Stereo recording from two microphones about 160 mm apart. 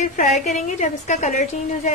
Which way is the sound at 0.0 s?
50° left (ahead or behind).